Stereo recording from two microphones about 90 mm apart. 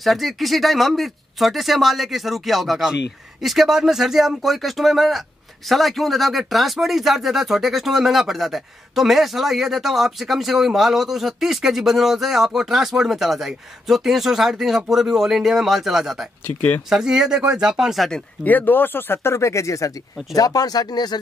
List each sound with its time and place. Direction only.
0.0 s speech: centre (ahead or behind)
16.4 s speech: 25° left (ahead or behind)
16.9 s speech: 5° right (ahead or behind)
18.4 s speech: 20° left (ahead or behind); by 21.2 s 50° left (ahead or behind)